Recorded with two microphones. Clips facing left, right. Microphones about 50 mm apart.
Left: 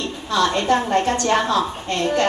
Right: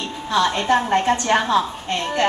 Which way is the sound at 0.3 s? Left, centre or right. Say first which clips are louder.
Even; centre.